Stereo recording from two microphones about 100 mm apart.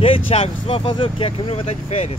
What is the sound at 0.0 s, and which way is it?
Speech, 75° left (ahead or behind).